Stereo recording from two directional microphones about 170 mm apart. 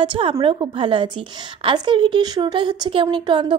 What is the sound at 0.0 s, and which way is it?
A woman's voice, 30° right (ahead or behind).